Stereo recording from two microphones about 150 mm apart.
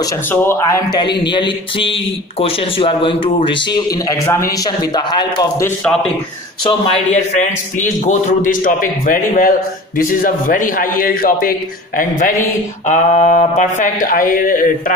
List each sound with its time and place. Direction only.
0.3 s a man's voice: 15° left (ahead or behind)
6.9 s a man's voice: 50° left (ahead or behind); by 14.7 s 65° left (ahead or behind)